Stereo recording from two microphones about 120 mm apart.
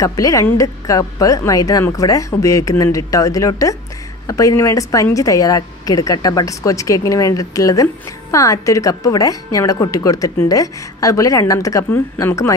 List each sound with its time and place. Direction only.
0.0 s a woman's voice: 30° left (ahead or behind)